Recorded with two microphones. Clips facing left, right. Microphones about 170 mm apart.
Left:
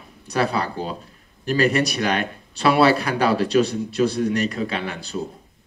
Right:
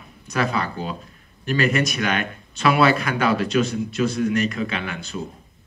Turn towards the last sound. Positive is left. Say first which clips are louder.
# left 2 dB
turn(degrees=35)  # may be behind; listen again after turning